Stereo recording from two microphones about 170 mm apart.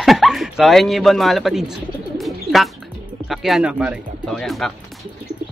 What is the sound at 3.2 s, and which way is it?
Speech, centre (ahead or behind).